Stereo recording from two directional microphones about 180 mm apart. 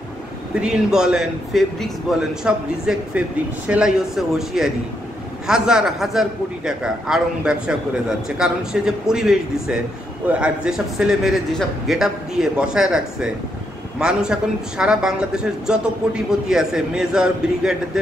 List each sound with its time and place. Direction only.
0.6 s a man's voice: 5° right (ahead or behind)